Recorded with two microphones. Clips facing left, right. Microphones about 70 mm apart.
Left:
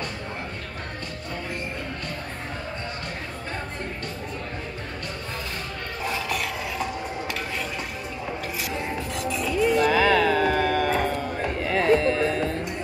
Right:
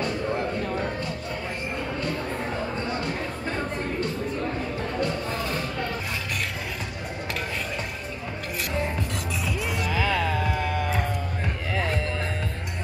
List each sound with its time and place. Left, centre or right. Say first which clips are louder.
9.5 s music: left 11 dB; centre
9.8 s music: left 6 dB; left
11.7 s a sound: left 9 dB; left